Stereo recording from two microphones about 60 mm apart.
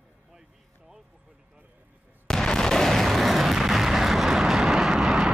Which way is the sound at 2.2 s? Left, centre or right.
Centre.